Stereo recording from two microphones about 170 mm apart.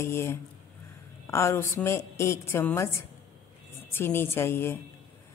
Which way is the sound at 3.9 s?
15° left (ahead or behind).